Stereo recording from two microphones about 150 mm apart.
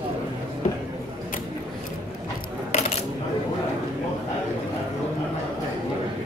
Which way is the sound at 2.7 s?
50° left (ahead or behind).